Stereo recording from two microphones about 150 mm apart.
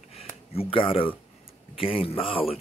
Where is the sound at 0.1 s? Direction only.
40° left (ahead or behind).